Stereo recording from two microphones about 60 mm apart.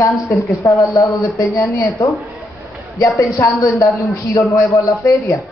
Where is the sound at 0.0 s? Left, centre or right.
Left.